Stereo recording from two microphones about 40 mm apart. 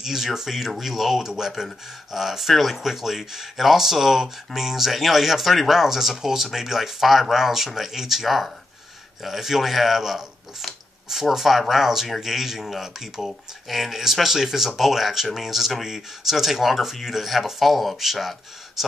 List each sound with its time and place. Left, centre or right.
0.0 s speech: centre